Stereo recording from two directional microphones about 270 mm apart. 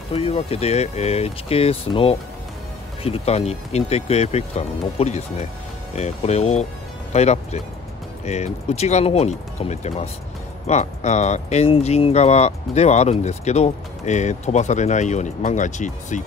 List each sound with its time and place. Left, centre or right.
0.1 s speech: left